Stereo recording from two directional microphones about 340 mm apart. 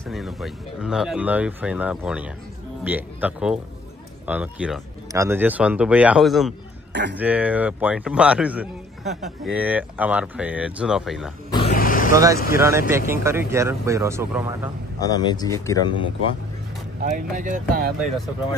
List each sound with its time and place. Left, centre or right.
0.0 s a man's voice: centre
6.9 s speech: right
7.2 s a man's voice: centre
11.5 s grunt: left
12.5 s speech: centre
15.0 s speech: centre
17.0 s speech: right
17.9 s a man's voice: centre